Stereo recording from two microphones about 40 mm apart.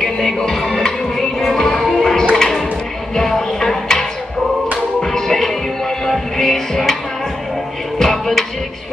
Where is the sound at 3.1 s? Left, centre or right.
Centre.